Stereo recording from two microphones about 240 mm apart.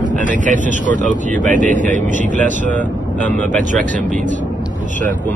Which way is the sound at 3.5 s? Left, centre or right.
Right.